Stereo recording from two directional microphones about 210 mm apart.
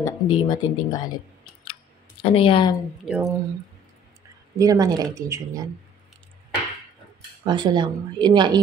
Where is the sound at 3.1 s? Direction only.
15° right (ahead or behind).